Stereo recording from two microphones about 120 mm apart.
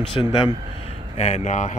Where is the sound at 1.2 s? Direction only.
75° left (ahead or behind).